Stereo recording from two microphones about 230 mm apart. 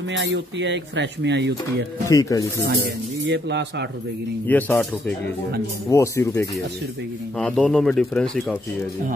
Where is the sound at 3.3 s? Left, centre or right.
Right.